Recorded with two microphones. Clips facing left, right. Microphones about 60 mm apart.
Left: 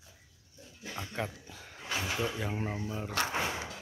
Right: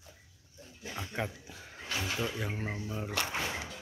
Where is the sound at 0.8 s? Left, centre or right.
Centre.